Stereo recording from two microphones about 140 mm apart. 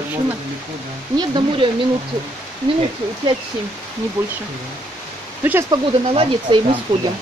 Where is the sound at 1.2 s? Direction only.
30° right (ahead or behind).